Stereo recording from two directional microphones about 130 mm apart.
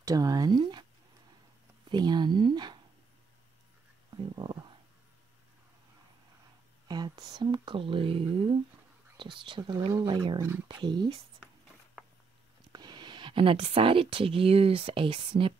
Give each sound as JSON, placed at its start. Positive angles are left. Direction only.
{"t": 0.0, "sound": "speech", "side_deg": -30}
{"t": 1.9, "sound": "speech", "side_deg": -35}
{"t": 4.4, "sound": "stomach rumble", "side_deg": -40}
{"t": 6.9, "sound": "speech", "side_deg": -30}
{"t": 12.7, "sound": "speech", "side_deg": -35}